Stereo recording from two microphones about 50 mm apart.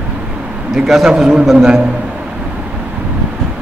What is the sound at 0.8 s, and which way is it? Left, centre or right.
Speech, centre.